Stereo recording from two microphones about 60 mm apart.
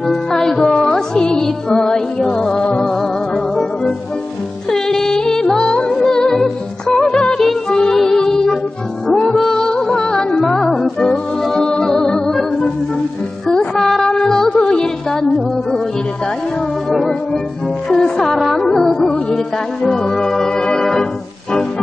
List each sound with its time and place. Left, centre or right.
0.1 s music: centre
4.6 s music: centre
7.1 s music: centre
16.9 s music: centre